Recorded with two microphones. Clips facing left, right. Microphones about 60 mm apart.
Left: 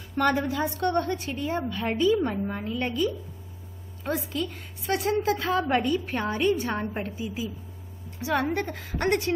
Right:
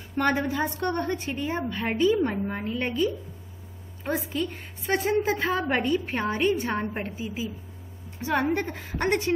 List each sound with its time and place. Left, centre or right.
0.1 s a woman's voice: right